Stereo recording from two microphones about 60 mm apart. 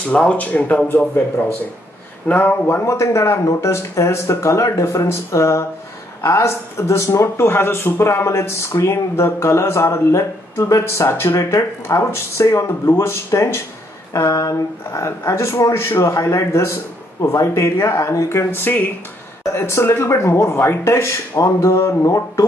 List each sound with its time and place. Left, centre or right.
0.4 s speech: left
0.8 s speech: left
2.2 s speech: left
2.8 s speech: left
19.5 s speech: left
21.4 s speech: left